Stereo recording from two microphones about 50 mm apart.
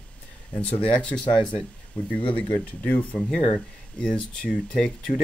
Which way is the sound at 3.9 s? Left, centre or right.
Centre.